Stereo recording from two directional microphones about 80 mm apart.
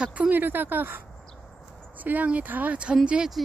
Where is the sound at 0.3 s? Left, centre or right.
Right.